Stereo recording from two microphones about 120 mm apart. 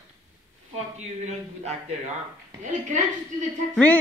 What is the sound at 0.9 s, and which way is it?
Speech, 70° right (ahead or behind).